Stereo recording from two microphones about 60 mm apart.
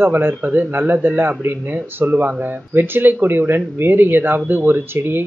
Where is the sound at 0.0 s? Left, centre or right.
Right.